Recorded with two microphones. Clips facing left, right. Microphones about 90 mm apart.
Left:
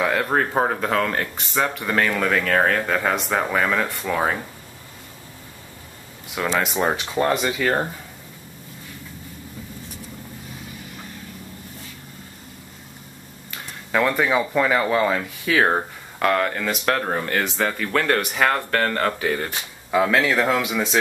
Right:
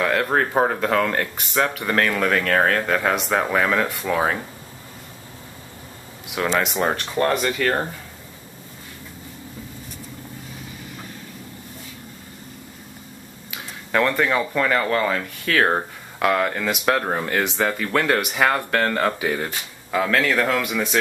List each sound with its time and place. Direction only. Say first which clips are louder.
0.0 s speech: right 1 dB; centre (ahead or behind)
6.2 s speech: right 1 dB; centre (ahead or behind)
13.9 s speech: even; 10° left (ahead or behind)
20.0 s speech: left 1 dB; 10° left (ahead or behind)